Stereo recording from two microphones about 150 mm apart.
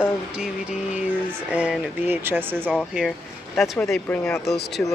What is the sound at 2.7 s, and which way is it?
Speech, centre (ahead or behind).